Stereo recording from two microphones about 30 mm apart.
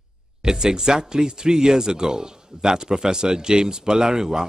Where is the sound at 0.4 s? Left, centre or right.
Right.